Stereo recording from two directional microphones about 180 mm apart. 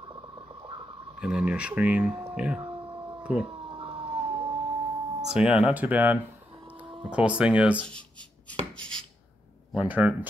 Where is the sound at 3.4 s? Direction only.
25° right (ahead or behind).